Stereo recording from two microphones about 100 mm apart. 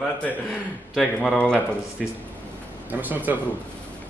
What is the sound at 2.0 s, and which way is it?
Speech, 5° right (ahead or behind).